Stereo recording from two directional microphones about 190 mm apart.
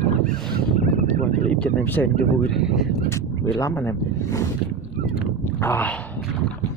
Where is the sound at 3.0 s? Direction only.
15° left (ahead or behind).